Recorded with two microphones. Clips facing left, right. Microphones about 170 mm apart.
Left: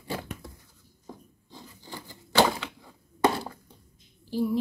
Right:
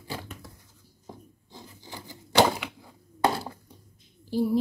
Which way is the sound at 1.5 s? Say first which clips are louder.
Left 1 dB; 15° right (ahead or behind).